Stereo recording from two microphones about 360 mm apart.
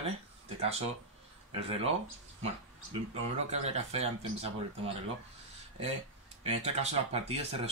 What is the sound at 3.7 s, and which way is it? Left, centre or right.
Speech, centre.